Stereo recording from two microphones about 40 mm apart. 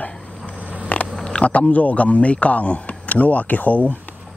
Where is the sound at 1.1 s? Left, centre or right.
Left.